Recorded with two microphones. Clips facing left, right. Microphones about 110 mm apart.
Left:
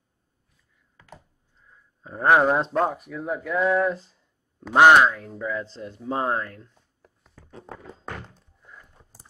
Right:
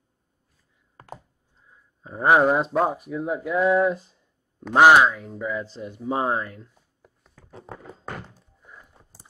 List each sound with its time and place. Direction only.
0.9 s computer keyboard: 45° right (ahead or behind)
1.7 s speech: 5° right (ahead or behind)
4.6 s speech: centre (ahead or behind)
7.3 s thunk: centre (ahead or behind)